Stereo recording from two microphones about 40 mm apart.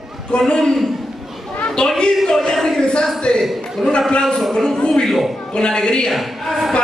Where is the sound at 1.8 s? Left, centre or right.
Left.